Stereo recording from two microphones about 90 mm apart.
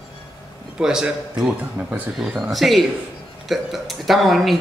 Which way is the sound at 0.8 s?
10° right (ahead or behind).